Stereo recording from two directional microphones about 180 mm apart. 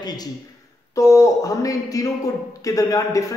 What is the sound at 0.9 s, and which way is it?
A man's voice, 20° left (ahead or behind).